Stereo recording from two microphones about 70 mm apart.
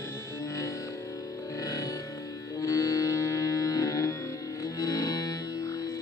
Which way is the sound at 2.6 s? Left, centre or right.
Left.